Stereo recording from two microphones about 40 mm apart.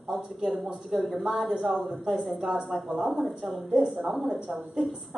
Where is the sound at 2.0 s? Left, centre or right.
Centre.